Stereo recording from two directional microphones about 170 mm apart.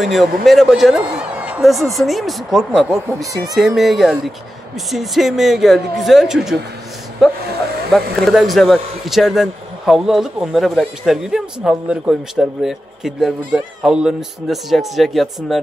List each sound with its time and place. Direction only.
0.0 s a man's voice: centre (ahead or behind)